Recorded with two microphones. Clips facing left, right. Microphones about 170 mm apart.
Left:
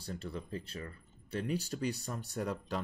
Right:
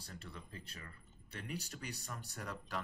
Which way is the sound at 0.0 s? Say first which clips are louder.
Left 10 dB; 30° left (ahead or behind).